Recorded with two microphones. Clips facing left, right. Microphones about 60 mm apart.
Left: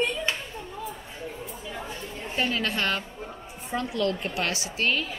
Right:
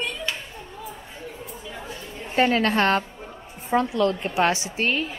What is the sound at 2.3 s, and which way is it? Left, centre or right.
A woman's voice, right.